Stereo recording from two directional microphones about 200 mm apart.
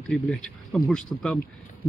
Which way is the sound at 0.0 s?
Centre (ahead or behind).